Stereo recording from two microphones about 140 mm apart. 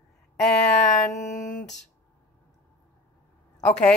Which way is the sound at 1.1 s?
65° left (ahead or behind).